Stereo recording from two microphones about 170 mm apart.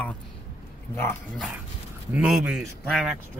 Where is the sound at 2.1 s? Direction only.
5° right (ahead or behind).